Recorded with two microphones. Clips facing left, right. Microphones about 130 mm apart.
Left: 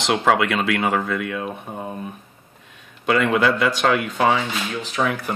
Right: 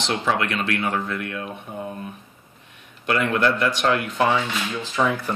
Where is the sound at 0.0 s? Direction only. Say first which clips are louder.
Left 5 dB; 90° left.